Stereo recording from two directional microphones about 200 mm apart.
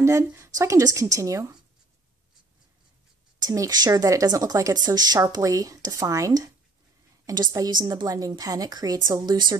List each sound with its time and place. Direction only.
0.0 s speech: 15° right (ahead or behind)
3.3 s a woman's voice: 15° right (ahead or behind)